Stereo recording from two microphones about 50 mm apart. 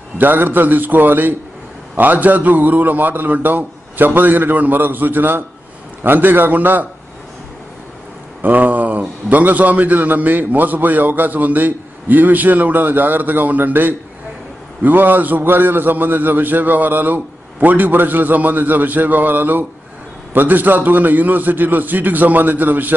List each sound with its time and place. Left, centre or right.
0.2 s a man's voice: right
8.4 s a man's voice: right